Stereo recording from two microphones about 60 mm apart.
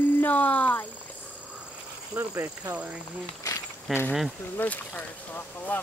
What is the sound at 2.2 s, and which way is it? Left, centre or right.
Speech, right.